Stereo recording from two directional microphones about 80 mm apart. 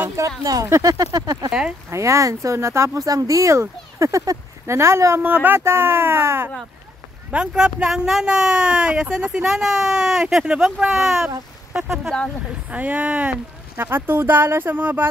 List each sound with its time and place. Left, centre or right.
0.4 s speech: right
1.9 s speech: right
7.2 s speech: centre
12.1 s speech: centre
12.6 s speech: centre
13.7 s speech: right